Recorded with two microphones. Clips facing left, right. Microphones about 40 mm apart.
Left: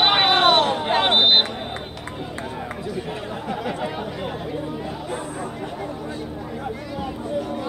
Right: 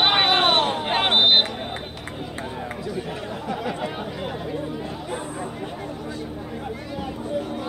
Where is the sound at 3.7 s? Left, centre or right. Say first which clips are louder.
Left 1 dB; centre.